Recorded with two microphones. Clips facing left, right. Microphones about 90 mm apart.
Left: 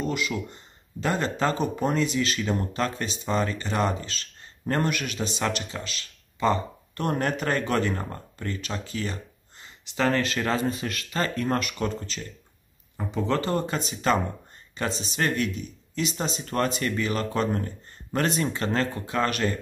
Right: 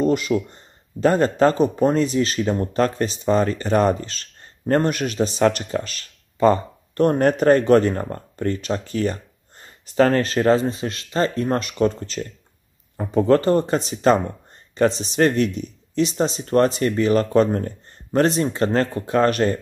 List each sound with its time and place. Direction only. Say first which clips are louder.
0.0 s speech: right 9 dB; 40° right (ahead or behind)
14.9 s speech: right 6 dB; 40° left (ahead or behind)
15.1 s speech: right 6 dB; 35° right (ahead or behind)